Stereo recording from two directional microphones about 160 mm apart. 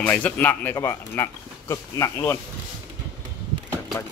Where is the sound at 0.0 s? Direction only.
10° left (ahead or behind).